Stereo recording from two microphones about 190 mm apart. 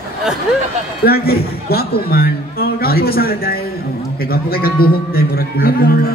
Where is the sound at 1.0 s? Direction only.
55° left (ahead or behind).